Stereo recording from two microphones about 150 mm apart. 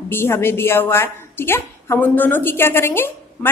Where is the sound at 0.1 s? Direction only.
15° left (ahead or behind).